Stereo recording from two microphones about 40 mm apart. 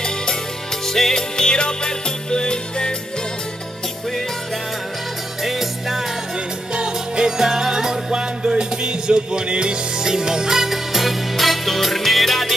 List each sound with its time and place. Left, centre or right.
0.8 s music: centre
5.4 s music: centre
6.7 s music: right; by 12.5 s centre